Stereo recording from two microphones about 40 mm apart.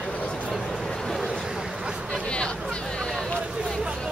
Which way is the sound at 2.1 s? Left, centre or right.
Left.